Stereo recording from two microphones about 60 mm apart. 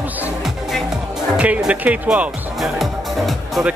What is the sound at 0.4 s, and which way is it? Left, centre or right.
Music, centre.